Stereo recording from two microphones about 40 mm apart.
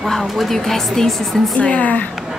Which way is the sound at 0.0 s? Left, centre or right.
Centre.